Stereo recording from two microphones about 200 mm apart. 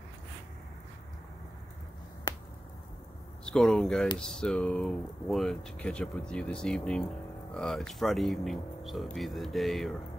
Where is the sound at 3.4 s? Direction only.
5° left (ahead or behind).